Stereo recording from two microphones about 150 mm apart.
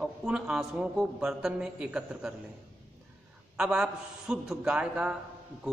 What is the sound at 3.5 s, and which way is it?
A woman's voice, 5° right (ahead or behind).